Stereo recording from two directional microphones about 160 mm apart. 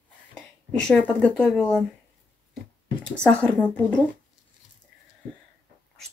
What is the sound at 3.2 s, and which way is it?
Speech, 10° left (ahead or behind).